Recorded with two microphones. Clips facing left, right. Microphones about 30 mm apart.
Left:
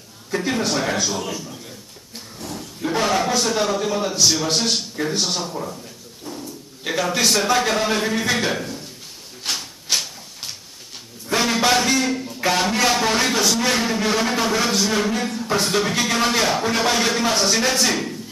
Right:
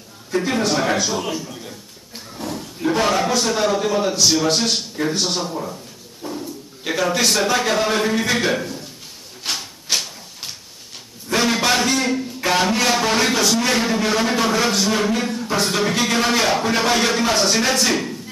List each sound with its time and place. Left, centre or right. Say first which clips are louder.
0.3 s a man's voice: right 2 dB; centre
2.5 s a man's voice: right 3 dB; centre
6.2 s a sound: right 5 dB; right
6.8 s a man's voice: right 1 dB; centre
9.4 s a sound: right 1 dB; centre
11.2 s a man's voice: even; centre